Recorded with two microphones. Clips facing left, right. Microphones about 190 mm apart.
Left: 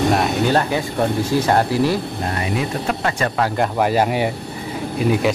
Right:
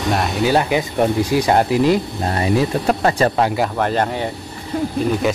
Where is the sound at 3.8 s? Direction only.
10° left (ahead or behind).